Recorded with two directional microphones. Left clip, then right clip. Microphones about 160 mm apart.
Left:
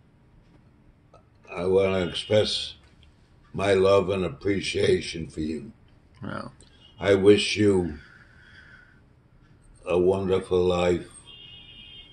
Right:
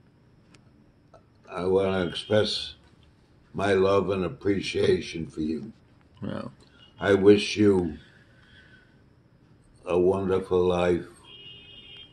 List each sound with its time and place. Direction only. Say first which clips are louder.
1.1 s a man's voice: even; centre (ahead or behind)
6.1 s speech: even; 25° right (ahead or behind)
6.6 s speech: left 1 dB; centre (ahead or behind)
9.8 s a man's voice: left 1 dB; 5° right (ahead or behind)